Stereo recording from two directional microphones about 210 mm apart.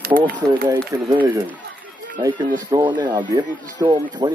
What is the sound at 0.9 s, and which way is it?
Speech, 10° right (ahead or behind).